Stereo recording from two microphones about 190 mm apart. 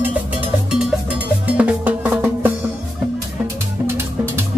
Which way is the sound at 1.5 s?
5° right (ahead or behind).